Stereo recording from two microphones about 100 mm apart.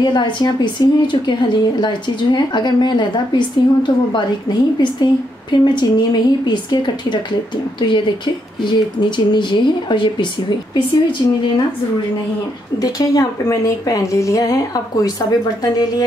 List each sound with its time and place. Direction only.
0.0 s speech: 50° left (ahead or behind)
8.6 s speech: 50° left (ahead or behind)
12.7 s a woman's voice: 35° left (ahead or behind)